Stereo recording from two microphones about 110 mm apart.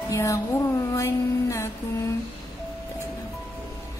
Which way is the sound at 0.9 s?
25° left (ahead or behind).